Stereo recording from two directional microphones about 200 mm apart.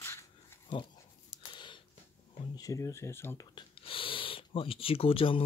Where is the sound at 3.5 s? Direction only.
25° left (ahead or behind).